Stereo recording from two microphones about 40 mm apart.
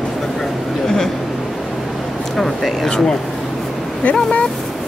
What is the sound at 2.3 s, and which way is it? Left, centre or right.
Speech, centre.